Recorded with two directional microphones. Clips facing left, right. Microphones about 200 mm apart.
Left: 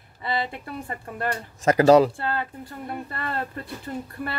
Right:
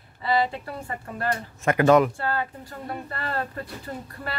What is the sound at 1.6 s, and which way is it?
Speech, 35° left (ahead or behind).